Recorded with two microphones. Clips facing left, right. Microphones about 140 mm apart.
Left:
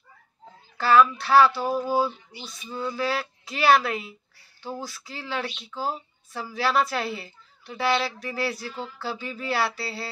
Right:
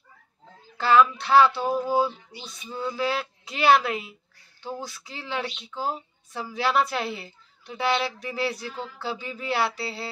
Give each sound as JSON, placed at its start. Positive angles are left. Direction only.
{"t": 0.7, "sound": "a woman's voice", "side_deg": -20}